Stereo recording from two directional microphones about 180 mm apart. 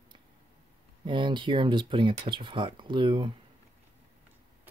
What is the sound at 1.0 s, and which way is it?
Speech, 25° right (ahead or behind).